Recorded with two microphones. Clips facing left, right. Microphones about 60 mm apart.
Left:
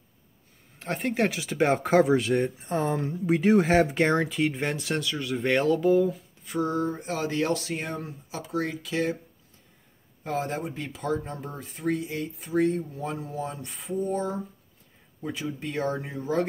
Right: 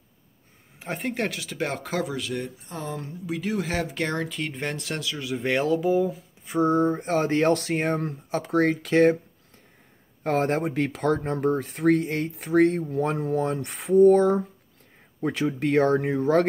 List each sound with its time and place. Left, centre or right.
0.7 s speech: centre
1.3 s speech: left
4.4 s speech: centre
6.4 s speech: right
10.2 s speech: right